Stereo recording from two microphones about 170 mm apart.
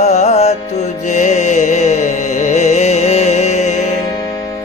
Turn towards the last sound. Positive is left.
turn(degrees=40)  # may be behind; listen again after turning